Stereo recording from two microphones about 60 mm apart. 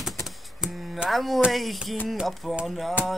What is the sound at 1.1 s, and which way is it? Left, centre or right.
Speech, centre.